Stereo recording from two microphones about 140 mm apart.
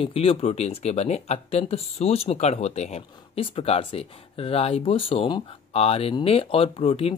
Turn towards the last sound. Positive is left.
turn(degrees=45)  # may be behind; listen again after turning